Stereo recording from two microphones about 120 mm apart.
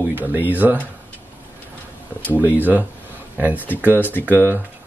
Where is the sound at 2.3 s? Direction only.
15° right (ahead or behind).